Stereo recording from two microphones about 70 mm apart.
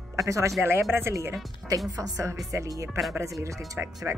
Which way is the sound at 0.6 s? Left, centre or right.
Right.